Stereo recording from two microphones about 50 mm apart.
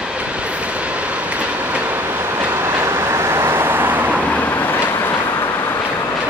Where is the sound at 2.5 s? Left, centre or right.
Right.